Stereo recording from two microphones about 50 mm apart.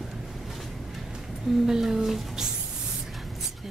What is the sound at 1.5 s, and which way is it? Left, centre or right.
Speech, centre.